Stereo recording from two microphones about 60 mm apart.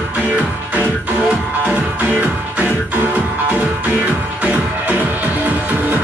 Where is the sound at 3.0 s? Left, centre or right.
Right.